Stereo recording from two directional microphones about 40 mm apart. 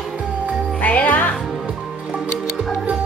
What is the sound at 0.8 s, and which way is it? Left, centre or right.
Music, left.